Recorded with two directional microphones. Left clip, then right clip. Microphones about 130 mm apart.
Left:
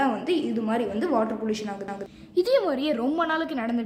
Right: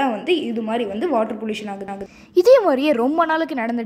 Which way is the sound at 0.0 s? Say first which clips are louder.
Right 5 dB; 35° right (ahead or behind).